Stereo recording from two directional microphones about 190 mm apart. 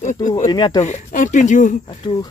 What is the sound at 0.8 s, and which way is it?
Speech, 40° left (ahead or behind).